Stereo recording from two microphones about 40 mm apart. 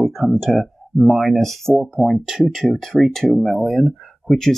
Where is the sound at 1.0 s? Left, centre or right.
Centre.